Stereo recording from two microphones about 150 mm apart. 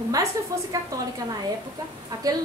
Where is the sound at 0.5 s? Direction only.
25° right (ahead or behind).